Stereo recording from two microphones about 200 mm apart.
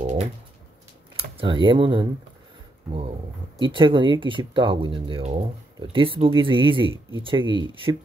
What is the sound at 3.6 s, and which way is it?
Speech, 25° right (ahead or behind).